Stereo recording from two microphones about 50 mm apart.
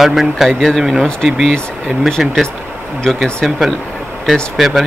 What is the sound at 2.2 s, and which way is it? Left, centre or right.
Speech, centre.